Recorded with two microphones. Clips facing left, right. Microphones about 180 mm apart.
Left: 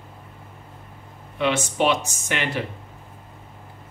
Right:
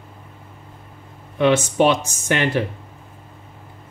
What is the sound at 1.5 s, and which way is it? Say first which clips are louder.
Speech: right 5 dB; 45° right (ahead or behind).